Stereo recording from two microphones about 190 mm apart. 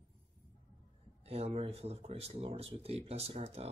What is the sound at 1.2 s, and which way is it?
Speech, 35° right (ahead or behind).